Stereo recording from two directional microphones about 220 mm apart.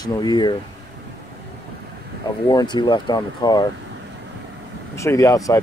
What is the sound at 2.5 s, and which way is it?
Speech, 20° left (ahead or behind).